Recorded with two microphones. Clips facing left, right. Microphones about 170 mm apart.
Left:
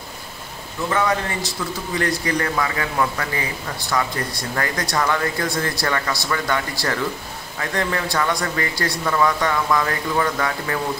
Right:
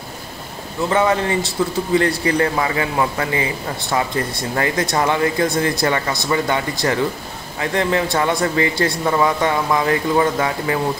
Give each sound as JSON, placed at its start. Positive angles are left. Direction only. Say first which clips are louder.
{"t": 0.8, "sound": "speech", "louder": "right 4 dB", "side_deg": -25}